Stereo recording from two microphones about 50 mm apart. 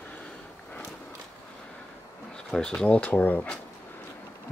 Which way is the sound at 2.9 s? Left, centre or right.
Left.